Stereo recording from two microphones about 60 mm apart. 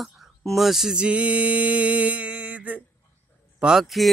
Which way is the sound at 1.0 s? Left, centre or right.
Right.